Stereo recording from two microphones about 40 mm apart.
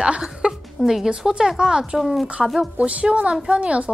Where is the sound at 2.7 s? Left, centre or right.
Right.